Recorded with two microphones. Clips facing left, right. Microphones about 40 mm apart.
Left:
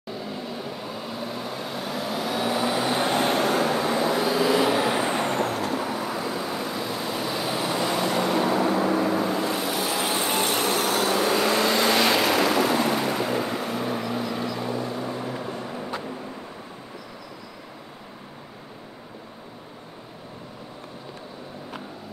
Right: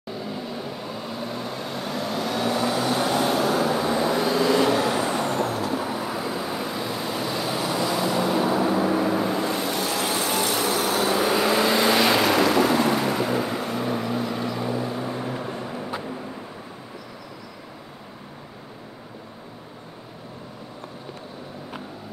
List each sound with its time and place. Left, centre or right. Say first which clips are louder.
0.1 s vehicle: right 1 dB; centre; by 3.7 s left
3.8 s vehicle: right 1 dB; centre; by 5.7 s left
5.9 s vehicle: even; centre
7.8 s vehicle: right 1 dB; centre
8.5 s vehicle: right 1 dB; centre; by 11.1 s left
11.1 s vehicle: right 2 dB; centre